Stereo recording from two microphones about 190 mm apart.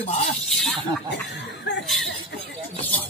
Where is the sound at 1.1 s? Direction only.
65° left (ahead or behind).